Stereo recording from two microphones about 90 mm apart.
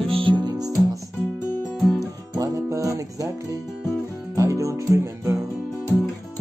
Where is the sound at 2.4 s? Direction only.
40° right (ahead or behind).